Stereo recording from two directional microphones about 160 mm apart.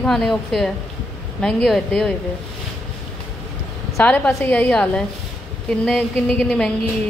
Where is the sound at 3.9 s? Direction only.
15° left (ahead or behind).